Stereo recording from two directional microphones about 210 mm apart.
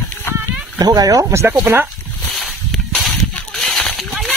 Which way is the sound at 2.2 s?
Centre (ahead or behind).